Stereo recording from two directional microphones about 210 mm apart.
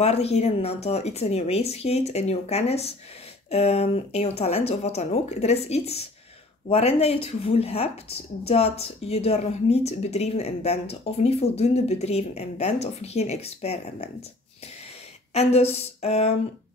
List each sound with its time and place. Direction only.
0.0 s speech: 30° left (ahead or behind)
15.3 s speech: 30° left (ahead or behind)